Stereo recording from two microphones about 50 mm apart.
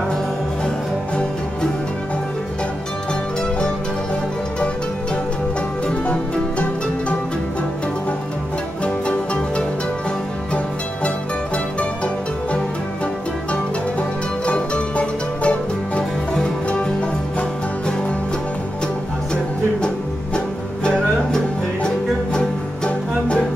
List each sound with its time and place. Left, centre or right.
8.8 s music: left
14.4 s music: left
20.3 s music: centre
22.8 s music: left